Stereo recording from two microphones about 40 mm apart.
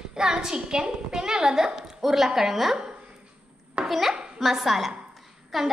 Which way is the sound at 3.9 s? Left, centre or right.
Centre.